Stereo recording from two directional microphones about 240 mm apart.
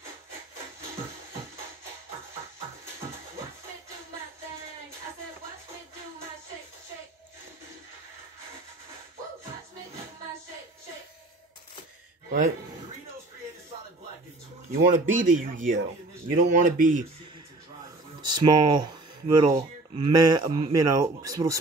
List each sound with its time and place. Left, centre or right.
12.3 s speech: right
14.7 s speech: right
18.2 s speech: centre